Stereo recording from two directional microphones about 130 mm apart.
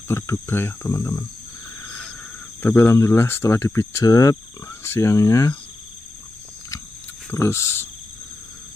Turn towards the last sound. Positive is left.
turn(degrees=20)  # may be behind; listen again after turning